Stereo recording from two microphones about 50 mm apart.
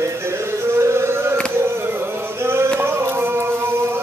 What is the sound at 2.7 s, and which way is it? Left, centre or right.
Music, right.